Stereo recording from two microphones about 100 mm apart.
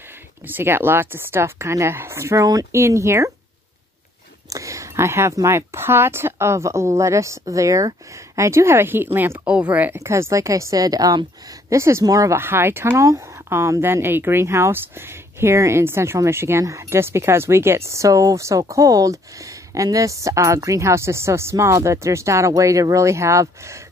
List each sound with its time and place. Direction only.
0.5 s speech: 20° right (ahead or behind)
4.5 s speech: 35° right (ahead or behind); by 9.9 s 15° right (ahead or behind)
9.9 s a woman's voice: 25° right (ahead or behind)